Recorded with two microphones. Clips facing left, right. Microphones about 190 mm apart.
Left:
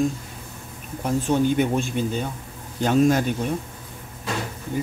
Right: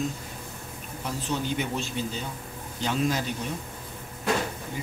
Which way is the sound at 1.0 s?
50° left (ahead or behind).